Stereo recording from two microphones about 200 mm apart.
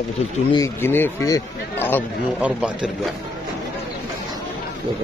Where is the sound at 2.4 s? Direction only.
5° right (ahead or behind).